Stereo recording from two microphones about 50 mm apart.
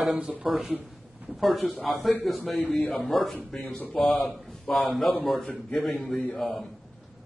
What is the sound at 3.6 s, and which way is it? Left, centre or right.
Speech, left.